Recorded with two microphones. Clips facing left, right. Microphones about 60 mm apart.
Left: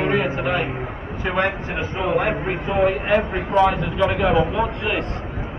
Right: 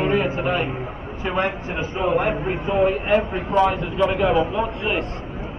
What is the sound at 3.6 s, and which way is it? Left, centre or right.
Speech, left.